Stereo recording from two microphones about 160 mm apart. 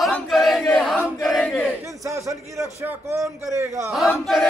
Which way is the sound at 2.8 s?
15° right (ahead or behind).